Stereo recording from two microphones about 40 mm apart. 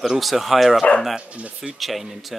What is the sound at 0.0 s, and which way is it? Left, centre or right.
Speech, centre.